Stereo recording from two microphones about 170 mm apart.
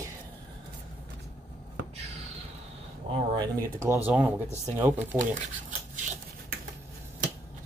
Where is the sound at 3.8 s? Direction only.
15° right (ahead or behind).